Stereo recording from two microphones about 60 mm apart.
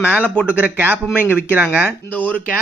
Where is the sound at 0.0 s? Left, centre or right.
Right.